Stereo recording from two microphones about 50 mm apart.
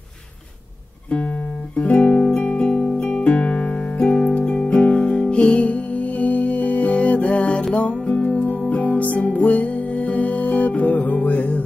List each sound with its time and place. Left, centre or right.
1.8 s guitar: left
3.1 s music: left